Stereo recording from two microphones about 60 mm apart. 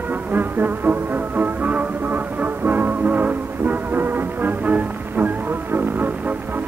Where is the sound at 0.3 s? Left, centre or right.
Right.